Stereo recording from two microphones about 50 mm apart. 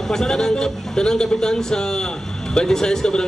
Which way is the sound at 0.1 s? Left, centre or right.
Centre.